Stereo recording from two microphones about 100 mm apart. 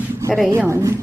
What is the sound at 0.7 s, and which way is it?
Speech, 30° right (ahead or behind).